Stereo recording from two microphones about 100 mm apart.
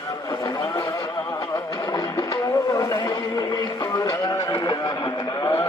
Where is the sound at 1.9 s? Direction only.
40° left (ahead or behind).